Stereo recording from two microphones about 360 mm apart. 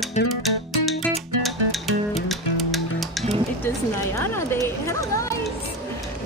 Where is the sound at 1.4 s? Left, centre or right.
Centre.